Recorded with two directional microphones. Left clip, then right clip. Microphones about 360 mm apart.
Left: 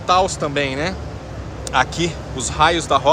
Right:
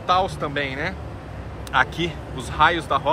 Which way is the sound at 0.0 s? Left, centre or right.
Centre.